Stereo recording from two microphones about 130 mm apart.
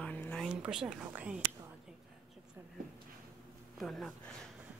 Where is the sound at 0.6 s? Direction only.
5° right (ahead or behind).